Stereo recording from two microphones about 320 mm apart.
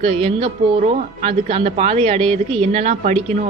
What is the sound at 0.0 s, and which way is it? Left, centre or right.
A woman's voice, centre.